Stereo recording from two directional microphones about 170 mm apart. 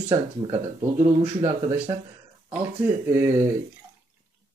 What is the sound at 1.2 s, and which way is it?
Speech, 15° right (ahead or behind).